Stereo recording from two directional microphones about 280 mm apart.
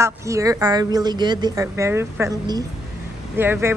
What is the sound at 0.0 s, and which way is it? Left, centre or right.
A woman's voice, centre.